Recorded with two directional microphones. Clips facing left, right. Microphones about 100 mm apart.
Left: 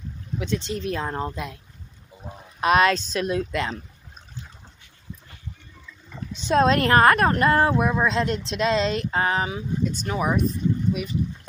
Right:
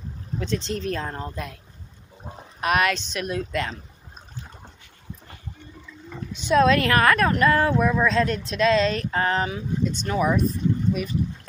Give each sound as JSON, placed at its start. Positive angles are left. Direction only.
{"t": 0.3, "sound": "a sound", "side_deg": -35}
{"t": 0.7, "sound": "speech", "side_deg": 10}
{"t": 1.1, "sound": "speech", "side_deg": 20}
{"t": 2.6, "sound": "speech", "side_deg": 30}
{"t": 6.3, "sound": "a woman's voice", "side_deg": 35}